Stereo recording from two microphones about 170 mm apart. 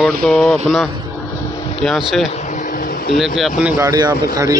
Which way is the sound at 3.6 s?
20° right (ahead or behind).